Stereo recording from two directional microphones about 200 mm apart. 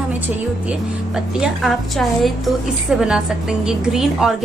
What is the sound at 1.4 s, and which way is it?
A woman's voice, centre (ahead or behind).